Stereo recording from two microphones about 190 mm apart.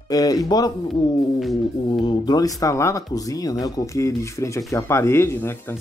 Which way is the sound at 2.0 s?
20° left (ahead or behind).